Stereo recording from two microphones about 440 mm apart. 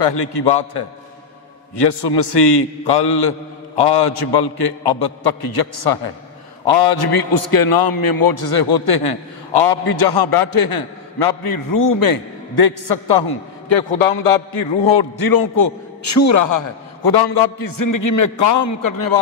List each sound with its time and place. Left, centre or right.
0.1 s a man's voice: left